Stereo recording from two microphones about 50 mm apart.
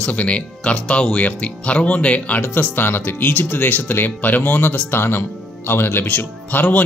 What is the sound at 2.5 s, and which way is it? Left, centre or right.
Speech, left.